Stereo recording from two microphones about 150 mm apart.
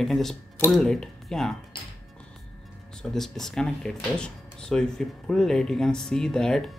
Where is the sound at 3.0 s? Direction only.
5° left (ahead or behind).